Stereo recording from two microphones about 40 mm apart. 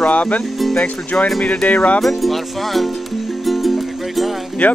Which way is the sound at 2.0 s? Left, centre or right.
Centre.